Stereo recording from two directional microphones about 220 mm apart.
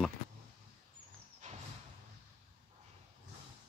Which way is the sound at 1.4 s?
35° right (ahead or behind).